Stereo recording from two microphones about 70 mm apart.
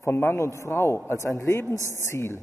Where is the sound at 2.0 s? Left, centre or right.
Left.